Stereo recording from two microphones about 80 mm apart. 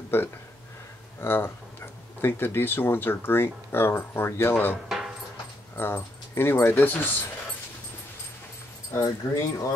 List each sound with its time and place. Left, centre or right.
0.1 s speech: left
4.8 s a sound: centre
5.8 s speech: left
8.9 s speech: left